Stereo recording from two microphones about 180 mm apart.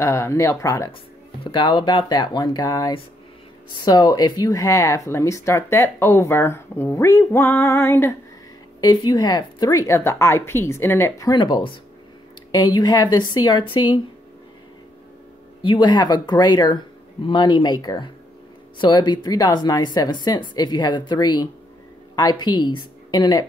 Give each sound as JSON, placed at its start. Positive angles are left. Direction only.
{"t": 0.0, "sound": "speech", "side_deg": 15}
{"t": 1.4, "sound": "speech", "side_deg": 25}
{"t": 15.6, "sound": "a woman's voice", "side_deg": 25}